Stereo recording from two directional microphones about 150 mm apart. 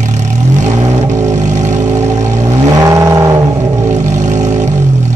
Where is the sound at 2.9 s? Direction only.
20° right (ahead or behind).